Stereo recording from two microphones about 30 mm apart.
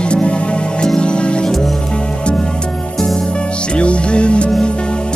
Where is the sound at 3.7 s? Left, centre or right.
Left.